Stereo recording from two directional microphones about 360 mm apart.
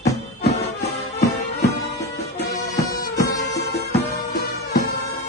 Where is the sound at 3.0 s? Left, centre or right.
Left.